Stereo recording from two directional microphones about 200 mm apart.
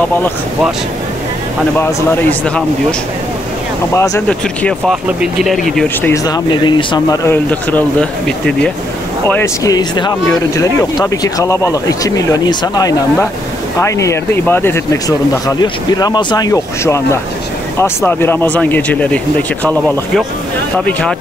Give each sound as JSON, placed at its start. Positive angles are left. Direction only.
{"t": 1.8, "sound": "speech", "side_deg": 10}
{"t": 3.9, "sound": "speech", "side_deg": 15}
{"t": 4.3, "sound": "speech", "side_deg": 0}
{"t": 6.0, "sound": "speech", "side_deg": 15}
{"t": 7.2, "sound": "speech", "side_deg": 5}
{"t": 9.3, "sound": "speech", "side_deg": 15}